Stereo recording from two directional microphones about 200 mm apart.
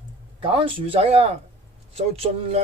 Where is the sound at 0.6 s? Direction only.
25° right (ahead or behind).